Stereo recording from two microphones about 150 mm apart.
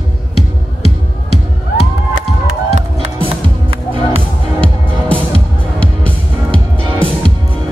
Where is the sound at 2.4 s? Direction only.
50° right (ahead or behind).